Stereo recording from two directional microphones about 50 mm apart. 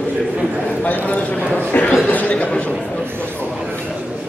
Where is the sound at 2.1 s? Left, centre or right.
Left.